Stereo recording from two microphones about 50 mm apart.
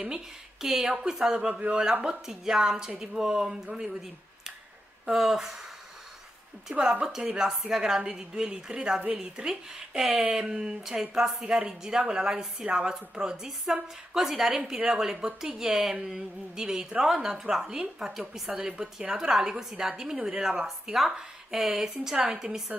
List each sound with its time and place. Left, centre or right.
0.0 s a woman's voice: centre
6.7 s a woman's voice: centre
11.4 s a woman's voice: centre
13.5 s a woman's voice: centre